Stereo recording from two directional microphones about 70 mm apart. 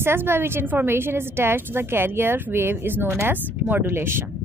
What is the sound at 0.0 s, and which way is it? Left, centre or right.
Speech, right.